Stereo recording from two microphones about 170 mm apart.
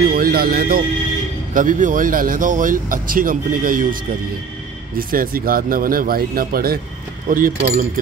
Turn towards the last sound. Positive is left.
turn(degrees=-50)  # may be behind; listen again after turning